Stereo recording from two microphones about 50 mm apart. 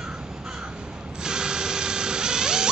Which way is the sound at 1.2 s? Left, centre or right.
Centre.